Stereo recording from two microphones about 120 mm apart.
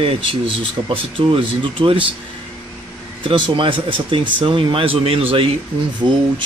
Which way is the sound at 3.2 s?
45° right (ahead or behind).